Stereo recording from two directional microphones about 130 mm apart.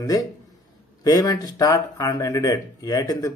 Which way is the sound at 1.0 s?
30° left (ahead or behind).